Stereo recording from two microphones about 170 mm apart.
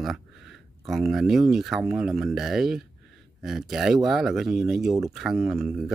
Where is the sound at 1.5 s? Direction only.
Centre (ahead or behind).